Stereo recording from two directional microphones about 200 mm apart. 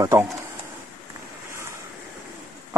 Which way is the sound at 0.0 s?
15° right (ahead or behind).